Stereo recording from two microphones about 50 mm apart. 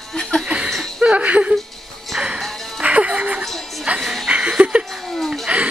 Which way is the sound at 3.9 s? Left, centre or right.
Right.